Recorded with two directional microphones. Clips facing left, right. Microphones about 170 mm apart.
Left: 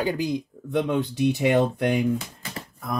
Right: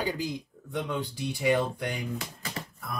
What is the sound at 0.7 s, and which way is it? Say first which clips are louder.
Speech: left 8 dB; 70° left (ahead or behind).